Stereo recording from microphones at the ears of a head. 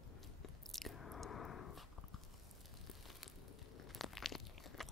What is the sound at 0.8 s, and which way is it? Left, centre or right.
Biting, left.